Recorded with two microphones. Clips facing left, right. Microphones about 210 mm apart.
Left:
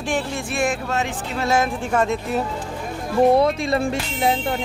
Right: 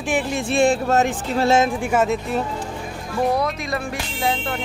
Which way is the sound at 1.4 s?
25° right (ahead or behind).